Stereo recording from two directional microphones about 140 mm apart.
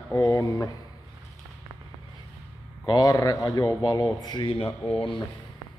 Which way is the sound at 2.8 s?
25° left (ahead or behind).